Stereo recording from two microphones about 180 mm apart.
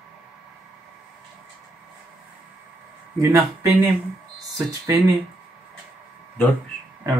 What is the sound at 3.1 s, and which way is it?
Speech, 20° right (ahead or behind).